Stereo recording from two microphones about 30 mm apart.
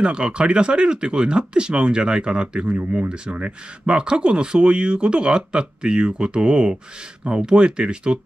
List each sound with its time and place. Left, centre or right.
0.0 s speech: right